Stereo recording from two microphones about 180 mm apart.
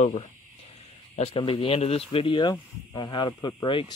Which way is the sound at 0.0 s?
35° left (ahead or behind).